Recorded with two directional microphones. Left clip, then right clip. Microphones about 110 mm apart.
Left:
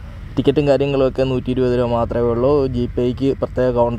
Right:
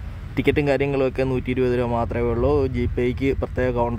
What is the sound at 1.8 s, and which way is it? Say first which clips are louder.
Speech: left 5 dB; 25° left (ahead or behind).